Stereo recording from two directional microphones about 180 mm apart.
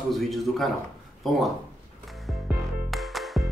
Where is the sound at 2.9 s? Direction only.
Centre (ahead or behind).